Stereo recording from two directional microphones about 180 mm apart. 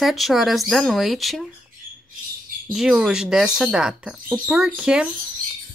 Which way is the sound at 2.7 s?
Centre (ahead or behind).